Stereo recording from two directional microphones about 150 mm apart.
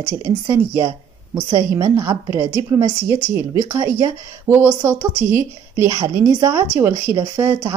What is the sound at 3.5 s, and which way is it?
A woman's voice, 25° right (ahead or behind).